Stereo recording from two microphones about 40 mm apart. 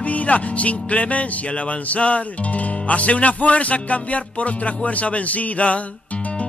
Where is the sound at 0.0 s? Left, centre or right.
Left.